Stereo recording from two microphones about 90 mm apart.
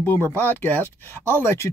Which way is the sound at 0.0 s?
20° left (ahead or behind).